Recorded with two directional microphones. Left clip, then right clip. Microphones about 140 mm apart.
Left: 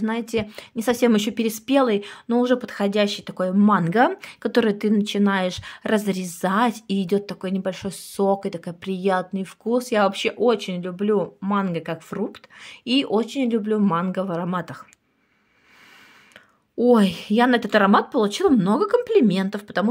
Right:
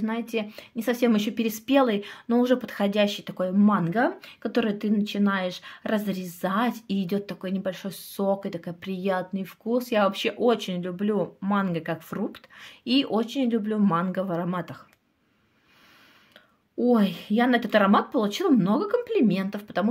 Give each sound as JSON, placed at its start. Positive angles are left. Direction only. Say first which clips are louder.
{"t": 0.0, "sound": "a woman's voice", "louder": "left 4 dB", "side_deg": 35}
{"t": 16.7, "sound": "a woman's voice", "louder": "left 6 dB", "side_deg": 45}